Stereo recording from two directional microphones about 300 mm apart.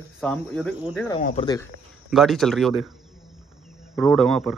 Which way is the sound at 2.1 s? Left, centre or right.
Centre.